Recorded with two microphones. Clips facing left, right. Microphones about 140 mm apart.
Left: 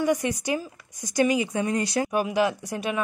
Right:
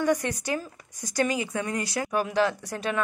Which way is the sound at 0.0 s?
10° left (ahead or behind).